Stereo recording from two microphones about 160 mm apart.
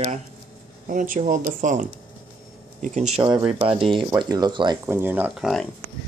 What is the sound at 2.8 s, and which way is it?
Speech, 45° right (ahead or behind).